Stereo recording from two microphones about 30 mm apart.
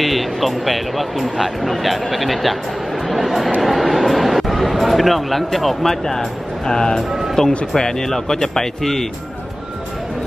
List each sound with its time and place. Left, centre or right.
0.0 s speech: centre
6.7 s speech: left
7.1 s speech: centre
7.7 s speech: centre